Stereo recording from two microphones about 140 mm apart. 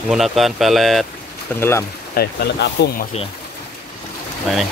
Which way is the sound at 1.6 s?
15° left (ahead or behind).